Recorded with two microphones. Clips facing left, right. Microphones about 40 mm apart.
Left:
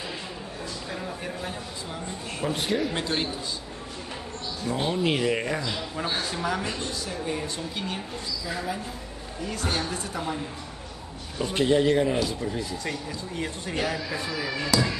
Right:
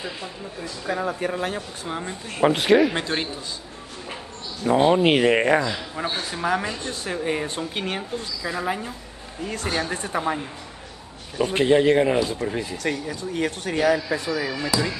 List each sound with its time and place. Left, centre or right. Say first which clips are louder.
0.8 s speech: right 12 dB; right
1.9 s speech: right 8 dB; right
2.4 s speech: right 10 dB; right
2.9 s a man's voice: right 2 dB; right
4.6 s speech: right 9 dB; right
6.3 s speech: right 4 dB; right
12.7 s speech: right 5 dB; right
14.7 s music: even; centre